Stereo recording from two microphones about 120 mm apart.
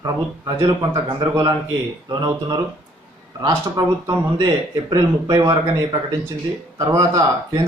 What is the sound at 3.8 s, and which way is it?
Speech, 35° right (ahead or behind).